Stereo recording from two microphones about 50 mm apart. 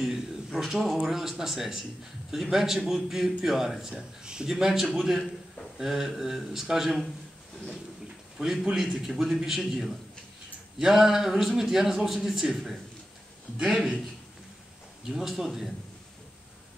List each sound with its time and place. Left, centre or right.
0.5 s speech: centre
3.9 s a man's voice: centre
8.4 s a man's voice: centre
15.0 s speech: centre